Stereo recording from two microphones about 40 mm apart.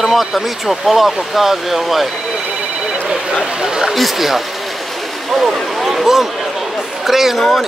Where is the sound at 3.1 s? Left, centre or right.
Centre.